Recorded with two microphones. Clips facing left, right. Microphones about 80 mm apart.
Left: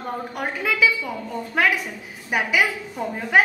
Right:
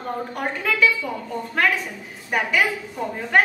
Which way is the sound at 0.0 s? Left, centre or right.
Centre.